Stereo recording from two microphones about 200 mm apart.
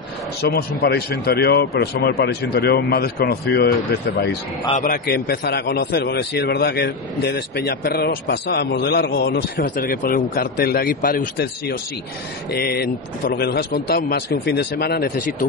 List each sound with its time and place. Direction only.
0.4 s a man's voice: 55° left (ahead or behind)
4.8 s a man's voice: 50° left (ahead or behind)